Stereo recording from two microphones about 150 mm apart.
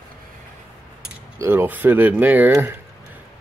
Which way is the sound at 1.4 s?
15° right (ahead or behind).